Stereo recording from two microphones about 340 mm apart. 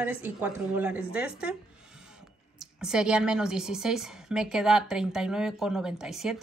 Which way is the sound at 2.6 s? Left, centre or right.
Centre.